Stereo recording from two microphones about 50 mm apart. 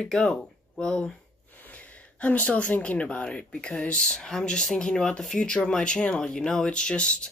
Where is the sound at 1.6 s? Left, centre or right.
Left; by 6.6 s centre.